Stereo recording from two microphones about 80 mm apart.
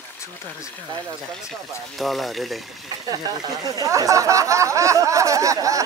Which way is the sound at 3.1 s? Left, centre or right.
Right.